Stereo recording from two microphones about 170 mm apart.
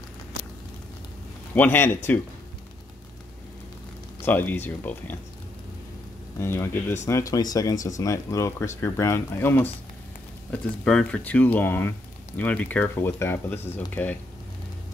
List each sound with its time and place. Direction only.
1.5 s speech: 10° left (ahead or behind)
4.2 s speech: 10° left (ahead or behind)
6.4 s speech: 15° left (ahead or behind)